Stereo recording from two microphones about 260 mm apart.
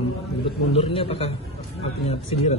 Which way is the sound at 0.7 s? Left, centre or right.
Left.